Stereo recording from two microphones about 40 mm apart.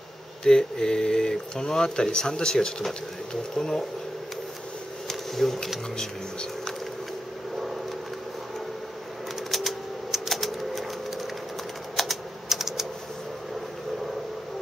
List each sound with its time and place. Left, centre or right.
0.4 s speech: centre
5.0 s a sound: centre
9.5 s typewriter: centre
12.0 s typing: centre